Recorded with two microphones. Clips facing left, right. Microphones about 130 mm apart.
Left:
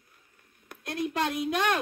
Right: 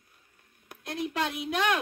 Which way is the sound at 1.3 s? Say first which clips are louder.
Right 1 dB; 45° left (ahead or behind).